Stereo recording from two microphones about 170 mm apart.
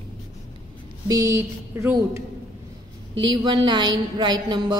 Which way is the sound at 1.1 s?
20° right (ahead or behind).